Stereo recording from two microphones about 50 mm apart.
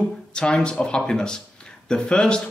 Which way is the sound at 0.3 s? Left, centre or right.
Centre.